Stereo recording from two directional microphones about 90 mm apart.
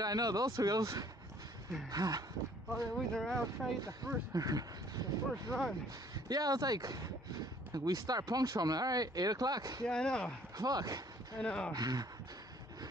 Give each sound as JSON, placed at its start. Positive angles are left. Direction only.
{"t": 0.0, "sound": "speech", "side_deg": -45}
{"t": 2.7, "sound": "speech", "side_deg": 5}
{"t": 4.3, "sound": "speech", "side_deg": -40}
{"t": 9.8, "sound": "speech", "side_deg": 10}
{"t": 10.6, "sound": "speech", "side_deg": -45}
{"t": 11.3, "sound": "speech", "side_deg": 10}
{"t": 11.7, "sound": "speech", "side_deg": -45}